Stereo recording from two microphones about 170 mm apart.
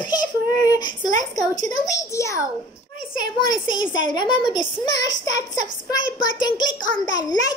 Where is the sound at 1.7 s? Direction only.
20° left (ahead or behind).